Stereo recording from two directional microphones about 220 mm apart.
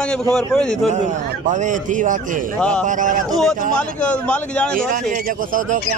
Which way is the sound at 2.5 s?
5° left (ahead or behind).